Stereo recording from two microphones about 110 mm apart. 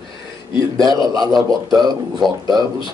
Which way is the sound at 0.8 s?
35° right (ahead or behind).